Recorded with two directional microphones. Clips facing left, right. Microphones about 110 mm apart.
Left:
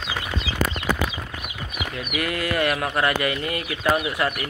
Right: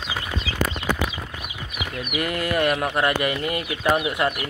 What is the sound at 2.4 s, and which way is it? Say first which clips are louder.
Speech: right 2 dB; 30° right (ahead or behind).